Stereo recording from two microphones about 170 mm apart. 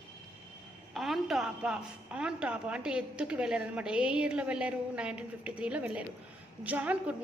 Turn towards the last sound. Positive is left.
turn(degrees=-10)  # may be behind; listen again after turning